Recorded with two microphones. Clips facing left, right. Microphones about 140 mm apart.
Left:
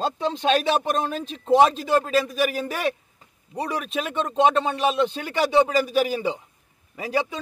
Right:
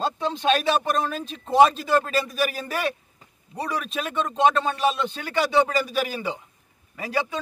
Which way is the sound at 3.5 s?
20° left (ahead or behind).